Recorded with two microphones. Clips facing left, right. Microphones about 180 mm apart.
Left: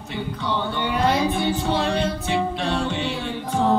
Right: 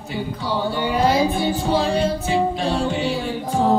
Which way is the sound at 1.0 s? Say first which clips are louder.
Right 1 dB; 5° right (ahead or behind).